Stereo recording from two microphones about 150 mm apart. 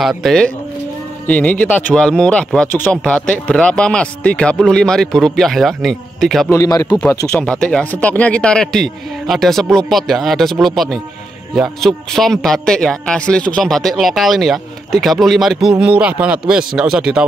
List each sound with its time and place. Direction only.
0.0 s a man's voice: centre (ahead or behind)
6.5 s speech: 20° left (ahead or behind)
7.0 s a man's voice: 5° left (ahead or behind)